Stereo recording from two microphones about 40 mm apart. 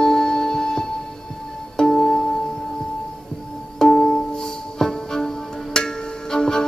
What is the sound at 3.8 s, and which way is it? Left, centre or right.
Music, centre.